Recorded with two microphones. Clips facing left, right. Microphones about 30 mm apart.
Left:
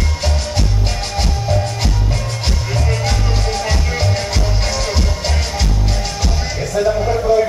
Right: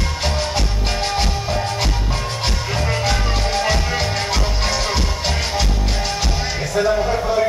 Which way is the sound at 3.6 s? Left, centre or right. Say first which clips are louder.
Right 1 dB; centre.